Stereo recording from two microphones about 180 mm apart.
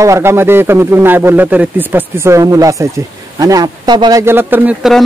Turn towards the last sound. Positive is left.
turn(degrees=-10)  # may be behind; listen again after turning